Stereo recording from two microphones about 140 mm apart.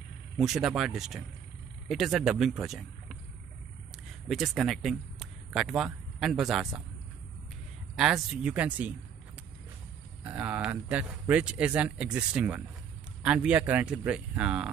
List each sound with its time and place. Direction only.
0.4 s speech: centre (ahead or behind)
4.3 s speech: centre (ahead or behind)
7.9 s speech: 5° right (ahead or behind)
10.2 s speech: 10° right (ahead or behind)